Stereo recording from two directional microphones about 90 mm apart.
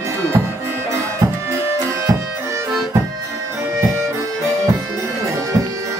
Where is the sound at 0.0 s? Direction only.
25° right (ahead or behind).